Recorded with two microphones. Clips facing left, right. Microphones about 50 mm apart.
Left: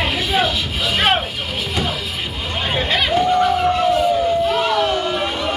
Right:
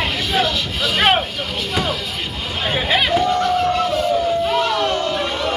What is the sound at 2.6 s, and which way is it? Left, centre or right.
Hubbub, centre.